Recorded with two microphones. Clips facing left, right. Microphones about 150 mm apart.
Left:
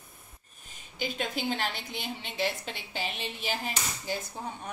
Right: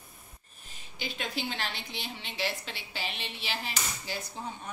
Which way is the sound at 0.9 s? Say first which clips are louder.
Left 3 dB; 50° left (ahead or behind).